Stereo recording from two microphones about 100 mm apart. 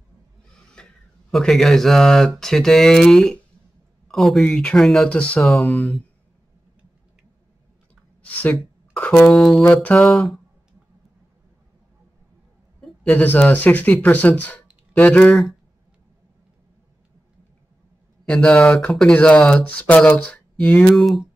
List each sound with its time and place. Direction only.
0.6 s speech: 5° left (ahead or behind)
7.9 s clicking: 15° left (ahead or behind)
8.9 s speech: 15° left (ahead or behind)
9.3 s speech: centre (ahead or behind)
13.0 s speech: 15° left (ahead or behind)
15.2 s speech: centre (ahead or behind)
18.2 s speech: 10° left (ahead or behind)
20.9 s speech: centre (ahead or behind)